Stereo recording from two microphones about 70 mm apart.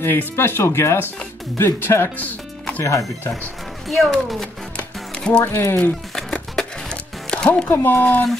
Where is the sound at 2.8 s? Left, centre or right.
Left.